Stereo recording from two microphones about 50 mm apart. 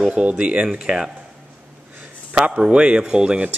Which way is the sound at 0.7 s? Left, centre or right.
Centre.